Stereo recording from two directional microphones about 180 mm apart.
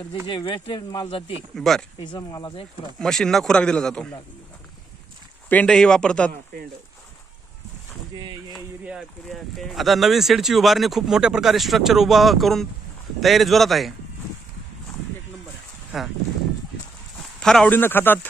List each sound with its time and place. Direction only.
0.3 s speech: 30° left (ahead or behind)
1.5 s speech: centre (ahead or behind)
2.0 s speech: 25° left (ahead or behind)
3.0 s speech: 5° left (ahead or behind)
5.5 s speech: 5° left (ahead or behind)
8.5 s speech: centre (ahead or behind)
15.9 s speech: 5° right (ahead or behind)
17.4 s speech: 5° left (ahead or behind)